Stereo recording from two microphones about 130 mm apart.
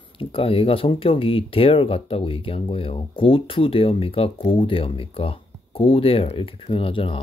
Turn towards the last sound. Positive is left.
turn(degrees=45)  # may be behind; listen again after turning